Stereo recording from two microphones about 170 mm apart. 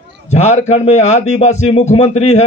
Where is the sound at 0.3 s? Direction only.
40° left (ahead or behind).